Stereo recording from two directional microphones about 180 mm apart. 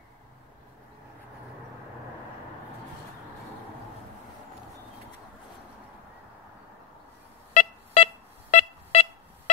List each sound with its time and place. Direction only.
7.5 s pulse: 35° left (ahead or behind)